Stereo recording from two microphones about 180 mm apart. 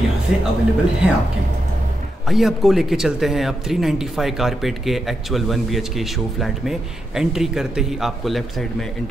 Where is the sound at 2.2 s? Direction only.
Centre (ahead or behind).